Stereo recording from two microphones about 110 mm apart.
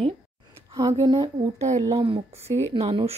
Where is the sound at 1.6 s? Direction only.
90° right.